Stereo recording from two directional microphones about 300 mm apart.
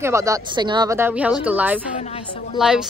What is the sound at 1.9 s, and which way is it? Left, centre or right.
Speech, left.